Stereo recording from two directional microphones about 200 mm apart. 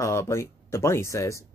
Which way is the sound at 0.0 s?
15° left (ahead or behind).